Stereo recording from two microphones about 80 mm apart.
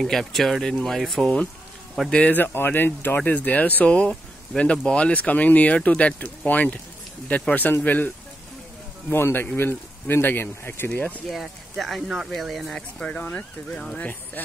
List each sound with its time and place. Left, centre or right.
0.0 s speech: centre
2.3 s speech: left
9.1 s speech: left
11.2 s speech: centre
12.7 s speech: centre